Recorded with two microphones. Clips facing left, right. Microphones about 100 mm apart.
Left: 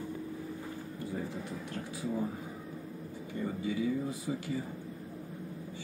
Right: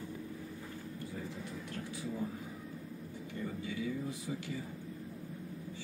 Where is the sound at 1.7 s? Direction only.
35° left (ahead or behind).